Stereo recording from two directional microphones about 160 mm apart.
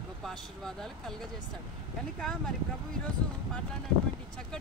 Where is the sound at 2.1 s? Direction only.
5° left (ahead or behind).